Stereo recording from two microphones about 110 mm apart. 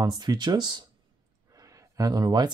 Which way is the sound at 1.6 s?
35° right (ahead or behind).